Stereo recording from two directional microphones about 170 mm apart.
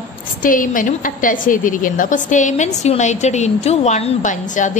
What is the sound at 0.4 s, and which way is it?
A woman's voice, 55° left (ahead or behind).